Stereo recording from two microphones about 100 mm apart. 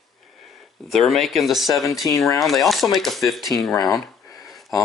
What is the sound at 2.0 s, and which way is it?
Speech, 30° left (ahead or behind).